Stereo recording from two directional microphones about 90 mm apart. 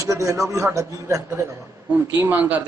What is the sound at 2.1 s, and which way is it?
Speech, 25° right (ahead or behind).